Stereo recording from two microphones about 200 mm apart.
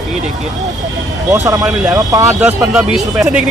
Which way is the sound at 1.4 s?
15° right (ahead or behind).